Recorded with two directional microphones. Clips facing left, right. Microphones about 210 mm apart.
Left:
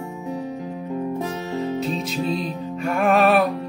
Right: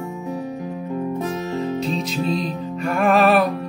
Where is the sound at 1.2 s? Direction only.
30° left (ahead or behind).